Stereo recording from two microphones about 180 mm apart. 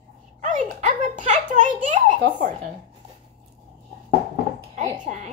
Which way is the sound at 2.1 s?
55° right (ahead or behind).